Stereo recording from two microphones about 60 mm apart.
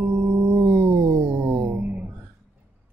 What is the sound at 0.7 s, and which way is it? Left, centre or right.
Music, right.